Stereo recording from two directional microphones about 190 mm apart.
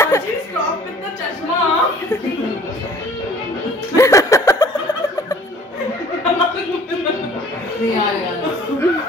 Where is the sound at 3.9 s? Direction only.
15° left (ahead or behind).